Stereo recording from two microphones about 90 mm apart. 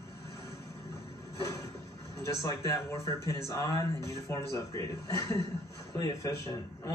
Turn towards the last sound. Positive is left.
turn(degrees=35)  # may be behind; listen again after turning